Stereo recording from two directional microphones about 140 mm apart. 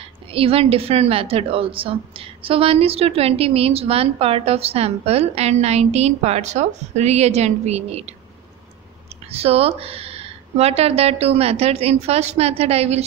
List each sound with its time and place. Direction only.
0.3 s a woman's voice: 45° right (ahead or behind)
9.3 s a woman's voice: 45° right (ahead or behind)